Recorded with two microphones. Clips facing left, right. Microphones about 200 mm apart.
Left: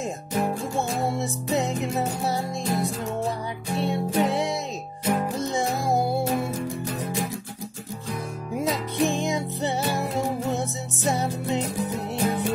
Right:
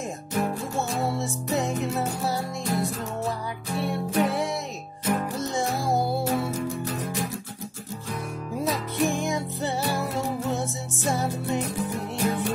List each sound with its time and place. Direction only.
0.3 s music: 15° left (ahead or behind)
8.5 s music: 20° left (ahead or behind)